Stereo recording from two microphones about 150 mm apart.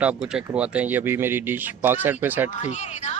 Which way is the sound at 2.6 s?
50° left (ahead or behind).